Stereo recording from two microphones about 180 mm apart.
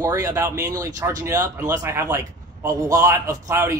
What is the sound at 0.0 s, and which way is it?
Speech, 15° right (ahead or behind).